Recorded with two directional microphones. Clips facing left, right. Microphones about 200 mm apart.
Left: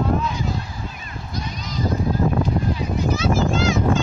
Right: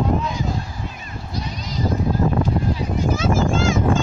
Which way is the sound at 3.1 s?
50° right (ahead or behind).